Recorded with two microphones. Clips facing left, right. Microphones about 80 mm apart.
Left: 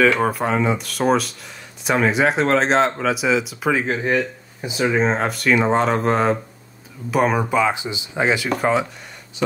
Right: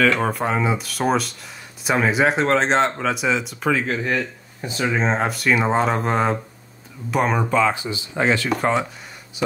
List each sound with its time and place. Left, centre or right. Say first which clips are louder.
0.0 s speech: left 2 dB; centre
0.3 s speech: left 1 dB; centre
3.7 s speech: left 3 dB; left
4.6 s speech: left 3 dB; centre
7.5 s speech: even; centre